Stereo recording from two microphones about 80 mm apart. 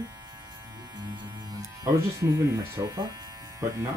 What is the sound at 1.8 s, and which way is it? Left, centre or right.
Speech, right.